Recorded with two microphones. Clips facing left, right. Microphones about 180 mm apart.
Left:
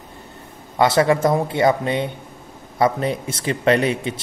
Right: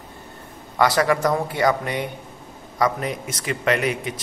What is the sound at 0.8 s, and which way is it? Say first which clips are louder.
A man's voice: left 3 dB; 25° left (ahead or behind).